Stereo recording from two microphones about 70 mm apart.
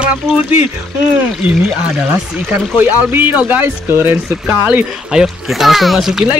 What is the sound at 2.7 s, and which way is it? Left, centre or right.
Speech, right.